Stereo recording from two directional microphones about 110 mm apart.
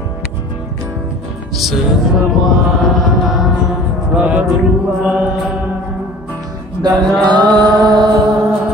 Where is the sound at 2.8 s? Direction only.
Centre (ahead or behind).